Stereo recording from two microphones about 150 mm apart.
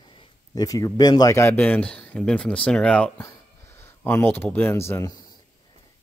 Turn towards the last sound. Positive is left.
turn(degrees=20)  # may be behind; listen again after turning